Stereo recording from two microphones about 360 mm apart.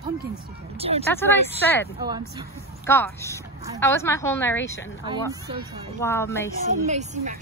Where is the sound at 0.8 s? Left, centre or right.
Centre.